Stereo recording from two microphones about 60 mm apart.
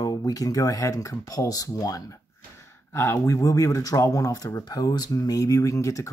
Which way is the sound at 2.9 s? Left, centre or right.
Left.